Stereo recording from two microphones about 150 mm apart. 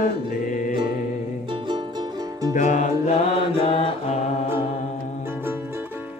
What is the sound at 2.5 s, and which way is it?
Music, 55° left (ahead or behind).